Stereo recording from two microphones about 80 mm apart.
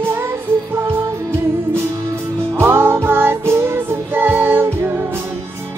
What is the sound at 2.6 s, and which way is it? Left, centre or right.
Music, right.